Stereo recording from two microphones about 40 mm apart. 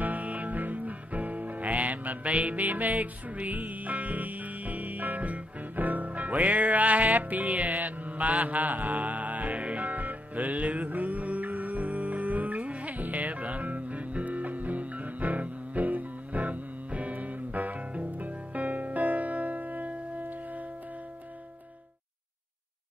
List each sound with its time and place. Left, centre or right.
0.0 s music: right